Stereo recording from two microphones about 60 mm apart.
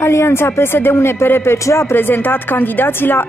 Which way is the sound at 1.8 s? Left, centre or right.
Left.